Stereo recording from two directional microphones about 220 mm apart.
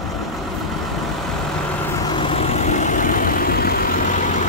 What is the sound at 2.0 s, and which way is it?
Vehicle, 20° left (ahead or behind).